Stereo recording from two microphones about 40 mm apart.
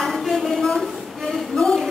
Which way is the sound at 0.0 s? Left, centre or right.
Centre.